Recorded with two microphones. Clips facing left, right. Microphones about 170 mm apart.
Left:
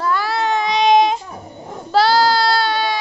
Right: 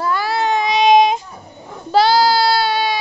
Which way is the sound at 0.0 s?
5° right (ahead or behind).